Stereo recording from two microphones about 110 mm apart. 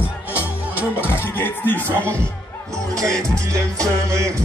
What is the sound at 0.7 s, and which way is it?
Music, 15° right (ahead or behind).